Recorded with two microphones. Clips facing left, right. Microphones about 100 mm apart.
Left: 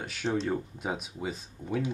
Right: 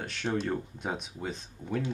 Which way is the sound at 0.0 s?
5° left (ahead or behind).